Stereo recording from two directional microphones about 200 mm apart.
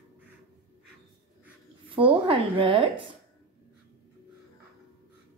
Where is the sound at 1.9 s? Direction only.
25° right (ahead or behind).